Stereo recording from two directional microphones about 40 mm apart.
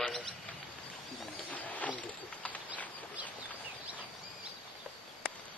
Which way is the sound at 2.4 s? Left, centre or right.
Left.